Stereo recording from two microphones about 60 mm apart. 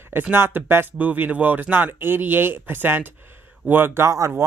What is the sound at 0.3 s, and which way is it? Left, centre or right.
Speech, right.